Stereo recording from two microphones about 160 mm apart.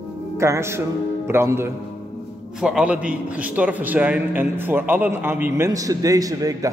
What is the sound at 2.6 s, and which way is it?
A man's voice, 5° right (ahead or behind).